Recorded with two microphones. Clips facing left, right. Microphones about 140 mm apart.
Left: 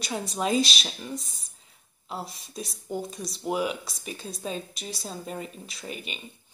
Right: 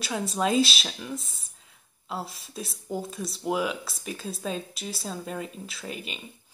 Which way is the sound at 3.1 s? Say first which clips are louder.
Right 2 dB; 30° right (ahead or behind).